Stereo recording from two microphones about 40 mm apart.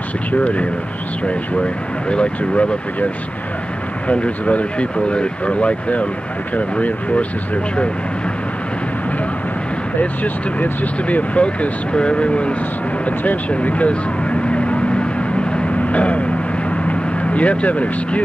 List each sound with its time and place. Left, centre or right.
0.3 s speech: left
4.1 s speech: left
9.9 s speech: left
13.5 s vehicle: left